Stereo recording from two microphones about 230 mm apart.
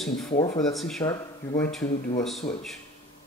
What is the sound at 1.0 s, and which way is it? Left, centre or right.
Speech, centre.